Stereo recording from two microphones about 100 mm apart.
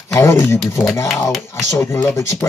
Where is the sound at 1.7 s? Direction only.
30° left (ahead or behind).